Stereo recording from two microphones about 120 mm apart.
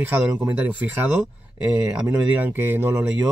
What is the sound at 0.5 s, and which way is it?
Speech, 15° right (ahead or behind).